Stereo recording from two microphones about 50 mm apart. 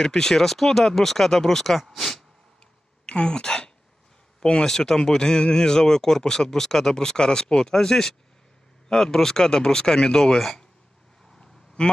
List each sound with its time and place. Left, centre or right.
0.0 s speech: centre
3.1 s speech: centre
11.4 s quack: centre